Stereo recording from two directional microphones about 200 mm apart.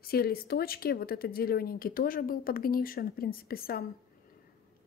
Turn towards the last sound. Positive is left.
turn(degrees=50)  # may be behind; listen again after turning